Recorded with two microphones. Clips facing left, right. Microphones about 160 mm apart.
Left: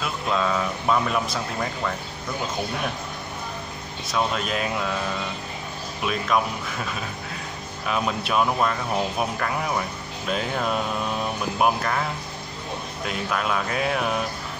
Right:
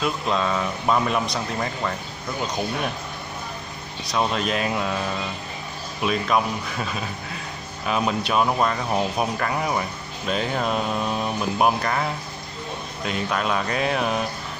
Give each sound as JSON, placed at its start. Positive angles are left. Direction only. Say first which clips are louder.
{"t": 0.0, "sound": "speech", "louder": "right 1 dB", "side_deg": 0}
{"t": 4.1, "sound": "speech", "louder": "right 2 dB", "side_deg": 0}
{"t": 6.0, "sound": "speech", "louder": "right 2 dB", "side_deg": 0}
{"t": 7.8, "sound": "speech", "louder": "right 2 dB", "side_deg": 0}
{"t": 13.0, "sound": "speech", "louder": "right 2 dB", "side_deg": 0}